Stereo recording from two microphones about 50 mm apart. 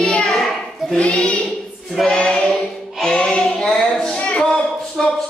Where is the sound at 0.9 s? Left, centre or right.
Left.